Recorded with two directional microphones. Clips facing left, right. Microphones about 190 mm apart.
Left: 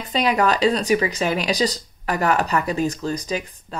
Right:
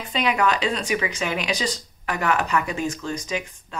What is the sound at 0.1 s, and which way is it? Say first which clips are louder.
Speech: left 3 dB; 35° left (ahead or behind).